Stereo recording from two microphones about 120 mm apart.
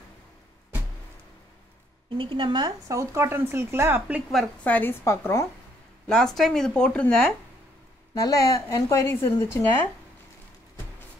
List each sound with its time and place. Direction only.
2.1 s speech: 45° right (ahead or behind)
2.9 s speech: 25° right (ahead or behind)
4.6 s speech: 15° left (ahead or behind)
6.0 s speech: 5° left (ahead or behind)
8.1 s speech: 25° left (ahead or behind)